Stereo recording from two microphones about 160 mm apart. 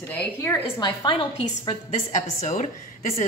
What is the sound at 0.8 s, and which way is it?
Speech, 30° left (ahead or behind).